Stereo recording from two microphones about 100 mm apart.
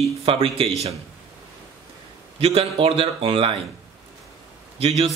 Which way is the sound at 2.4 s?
75° right (ahead or behind).